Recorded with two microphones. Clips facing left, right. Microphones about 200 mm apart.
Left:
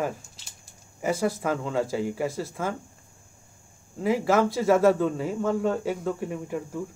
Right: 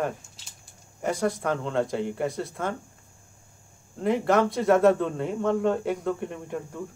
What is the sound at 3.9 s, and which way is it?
Speech, 5° left (ahead or behind).